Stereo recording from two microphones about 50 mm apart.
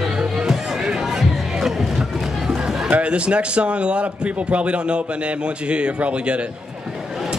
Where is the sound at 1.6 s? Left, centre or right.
Centre.